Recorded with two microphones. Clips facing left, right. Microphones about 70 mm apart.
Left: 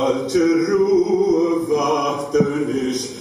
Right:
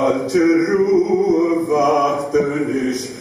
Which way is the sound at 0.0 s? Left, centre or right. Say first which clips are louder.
Right 2 dB; right.